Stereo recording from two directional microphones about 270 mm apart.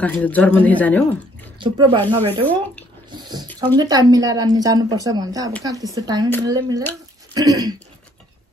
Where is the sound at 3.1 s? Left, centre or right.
Centre.